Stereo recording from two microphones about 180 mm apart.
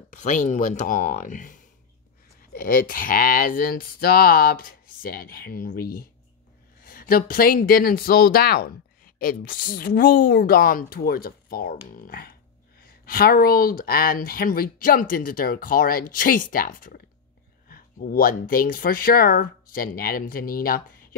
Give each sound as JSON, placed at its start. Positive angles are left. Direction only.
{"t": 0.1, "sound": "speech", "side_deg": 45}